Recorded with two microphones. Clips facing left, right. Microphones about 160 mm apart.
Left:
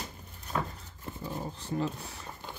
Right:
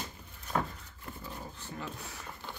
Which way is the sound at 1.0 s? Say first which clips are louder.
Left 6 dB; 35° left (ahead or behind).